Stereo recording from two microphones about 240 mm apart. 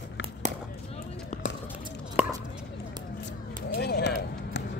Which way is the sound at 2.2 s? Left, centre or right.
Centre.